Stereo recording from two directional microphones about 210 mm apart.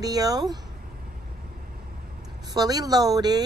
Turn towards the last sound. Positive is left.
turn(degrees=-20)  # may be behind; listen again after turning